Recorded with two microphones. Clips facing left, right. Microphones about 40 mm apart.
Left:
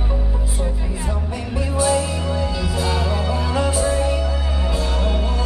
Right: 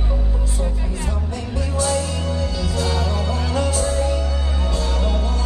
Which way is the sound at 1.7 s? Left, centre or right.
Centre.